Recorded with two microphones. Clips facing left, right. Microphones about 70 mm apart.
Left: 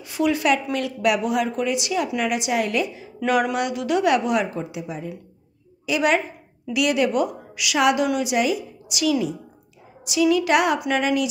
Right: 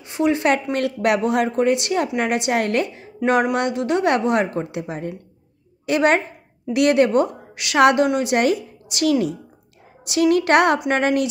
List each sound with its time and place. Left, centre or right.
0.0 s speech: right
0.7 s a woman's voice: right
3.3 s speech: right
4.5 s a woman's voice: right